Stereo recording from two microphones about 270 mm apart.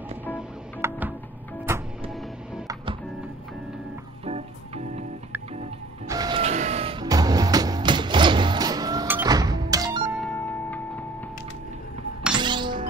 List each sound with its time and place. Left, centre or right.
0.3 s music: centre
2.7 s music: centre
4.3 s organ: right
6.0 s music: centre
10.2 s music: centre
12.4 s music: centre